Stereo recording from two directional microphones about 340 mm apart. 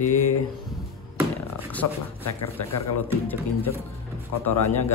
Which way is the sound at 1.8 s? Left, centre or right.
Left.